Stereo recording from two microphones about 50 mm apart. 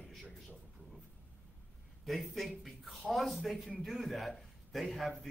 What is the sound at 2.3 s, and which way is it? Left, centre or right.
A man's voice, centre.